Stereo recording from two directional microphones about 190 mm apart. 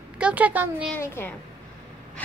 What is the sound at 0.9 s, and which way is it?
Speech, 10° left (ahead or behind).